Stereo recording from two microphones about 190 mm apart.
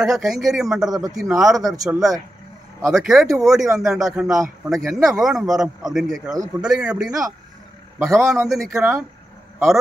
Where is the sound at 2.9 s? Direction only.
Centre (ahead or behind).